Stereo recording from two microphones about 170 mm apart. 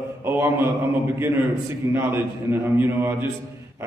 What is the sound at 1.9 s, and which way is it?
A man's voice, 15° right (ahead or behind).